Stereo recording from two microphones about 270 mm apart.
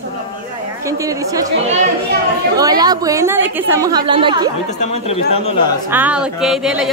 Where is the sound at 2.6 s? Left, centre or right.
Centre.